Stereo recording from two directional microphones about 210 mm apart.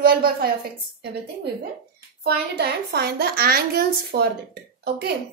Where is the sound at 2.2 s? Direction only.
50° right (ahead or behind).